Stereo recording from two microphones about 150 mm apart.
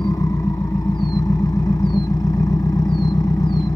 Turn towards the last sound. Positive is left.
turn(degrees=25)  # may be behind; listen again after turning